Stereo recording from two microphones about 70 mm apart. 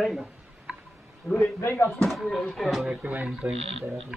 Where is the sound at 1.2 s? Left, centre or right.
Centre.